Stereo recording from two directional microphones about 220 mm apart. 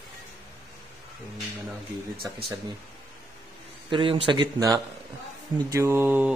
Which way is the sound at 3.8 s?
20° right (ahead or behind).